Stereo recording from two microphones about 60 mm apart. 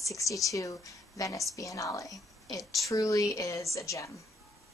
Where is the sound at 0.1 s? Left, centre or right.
Left.